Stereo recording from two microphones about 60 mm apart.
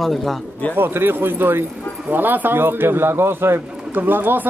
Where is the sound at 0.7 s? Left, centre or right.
Right.